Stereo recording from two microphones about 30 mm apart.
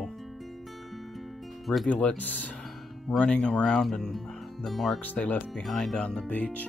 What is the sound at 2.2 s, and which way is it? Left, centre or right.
Speech, left.